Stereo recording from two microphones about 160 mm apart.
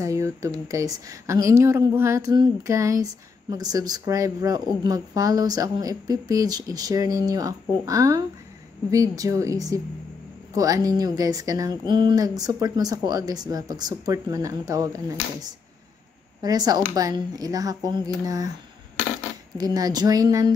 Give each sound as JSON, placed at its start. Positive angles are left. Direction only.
{"t": 0.0, "sound": "speech", "side_deg": -20}
{"t": 19.5, "sound": "speech", "side_deg": -25}